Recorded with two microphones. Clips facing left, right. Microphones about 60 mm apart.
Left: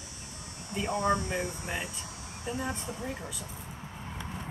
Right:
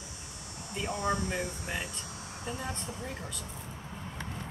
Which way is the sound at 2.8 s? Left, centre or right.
Centre.